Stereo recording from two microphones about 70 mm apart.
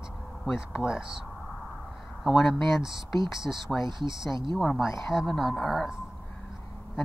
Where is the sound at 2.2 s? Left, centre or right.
Centre.